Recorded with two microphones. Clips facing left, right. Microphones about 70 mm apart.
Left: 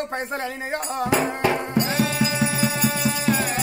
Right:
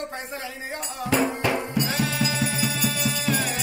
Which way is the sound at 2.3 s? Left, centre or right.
Left.